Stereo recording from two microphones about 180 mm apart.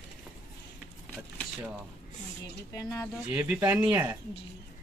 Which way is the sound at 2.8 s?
20° left (ahead or behind).